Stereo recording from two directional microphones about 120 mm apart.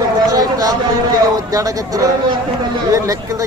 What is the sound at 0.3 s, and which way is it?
Chatter, 30° right (ahead or behind).